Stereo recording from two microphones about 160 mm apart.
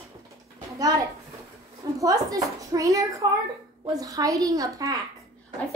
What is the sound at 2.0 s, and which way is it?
Speech, 20° right (ahead or behind).